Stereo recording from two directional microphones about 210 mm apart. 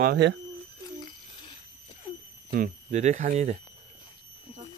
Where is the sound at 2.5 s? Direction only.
40° right (ahead or behind).